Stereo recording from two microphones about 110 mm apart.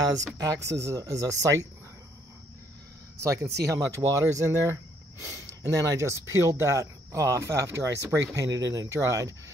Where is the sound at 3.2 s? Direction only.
25° right (ahead or behind).